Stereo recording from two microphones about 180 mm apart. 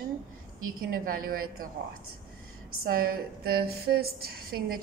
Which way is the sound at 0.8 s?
55° right (ahead or behind).